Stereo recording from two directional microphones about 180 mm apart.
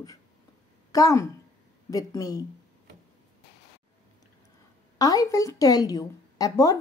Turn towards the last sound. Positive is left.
turn(degrees=20)  # may be behind; listen again after turning